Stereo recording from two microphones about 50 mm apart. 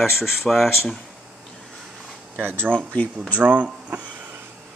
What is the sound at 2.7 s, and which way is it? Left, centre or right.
Speech, left.